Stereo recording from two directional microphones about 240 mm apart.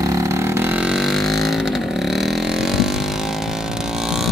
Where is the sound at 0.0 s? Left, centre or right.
Centre.